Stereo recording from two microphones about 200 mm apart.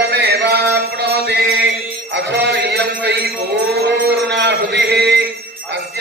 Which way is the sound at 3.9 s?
55° right (ahead or behind).